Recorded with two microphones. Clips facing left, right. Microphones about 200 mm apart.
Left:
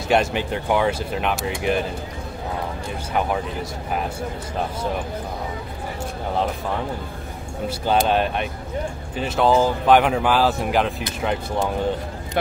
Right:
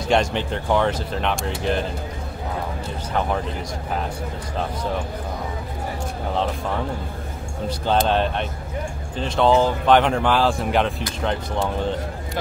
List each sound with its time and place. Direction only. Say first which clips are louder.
0.1 s speech: left 1 dB; 5° left (ahead or behind)
3.1 s speech: left 1 dB; 10° left (ahead or behind)
7.6 s speech: even; 10° left (ahead or behind)